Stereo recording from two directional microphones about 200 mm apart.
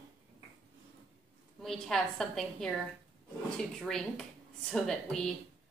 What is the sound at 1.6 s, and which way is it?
A woman's voice, centre (ahead or behind).